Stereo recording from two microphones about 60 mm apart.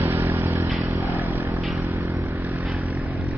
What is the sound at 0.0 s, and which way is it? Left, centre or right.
Vehicle, right.